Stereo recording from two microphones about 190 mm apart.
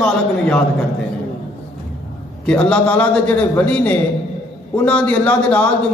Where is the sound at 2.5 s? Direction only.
5° left (ahead or behind).